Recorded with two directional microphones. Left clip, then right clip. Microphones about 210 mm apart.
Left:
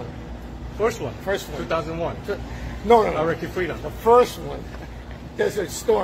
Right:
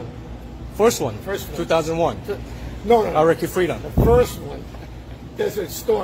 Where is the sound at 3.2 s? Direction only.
50° right (ahead or behind).